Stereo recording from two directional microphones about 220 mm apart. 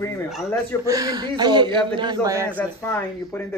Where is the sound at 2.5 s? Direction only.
10° left (ahead or behind).